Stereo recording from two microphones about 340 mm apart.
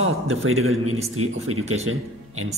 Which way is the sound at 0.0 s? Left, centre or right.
Right.